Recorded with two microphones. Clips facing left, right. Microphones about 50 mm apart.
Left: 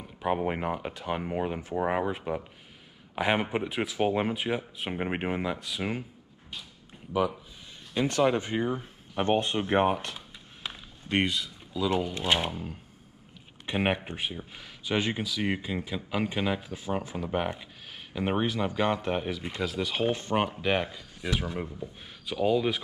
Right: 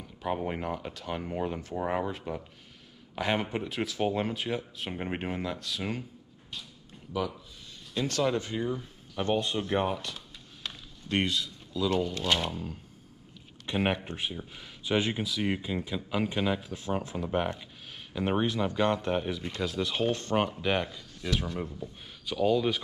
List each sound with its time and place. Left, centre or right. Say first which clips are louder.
0.0 s speech: left 4 dB; left
7.1 s speech: left 5 dB; left
10.1 s a sound: left 1 dB; centre
13.7 s speech: left 1 dB; centre